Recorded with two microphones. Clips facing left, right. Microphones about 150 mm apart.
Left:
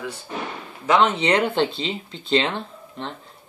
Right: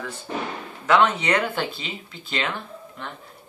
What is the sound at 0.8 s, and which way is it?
Speech, 20° left (ahead or behind).